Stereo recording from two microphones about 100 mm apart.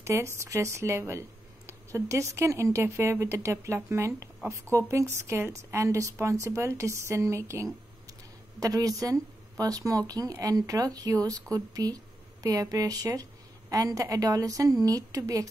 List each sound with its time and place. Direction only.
0.0 s a woman's voice: 30° right (ahead or behind)